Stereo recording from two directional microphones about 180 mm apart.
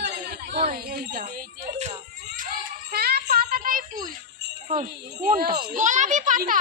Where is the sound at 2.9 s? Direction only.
60° right (ahead or behind).